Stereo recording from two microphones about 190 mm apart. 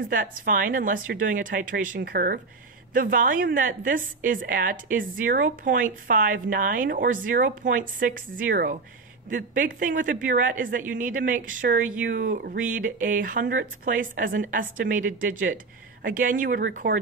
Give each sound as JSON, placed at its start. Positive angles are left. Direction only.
{"t": 0.0, "sound": "a woman's voice", "side_deg": -45}